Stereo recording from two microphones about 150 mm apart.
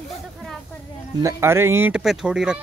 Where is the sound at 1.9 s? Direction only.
5° right (ahead or behind).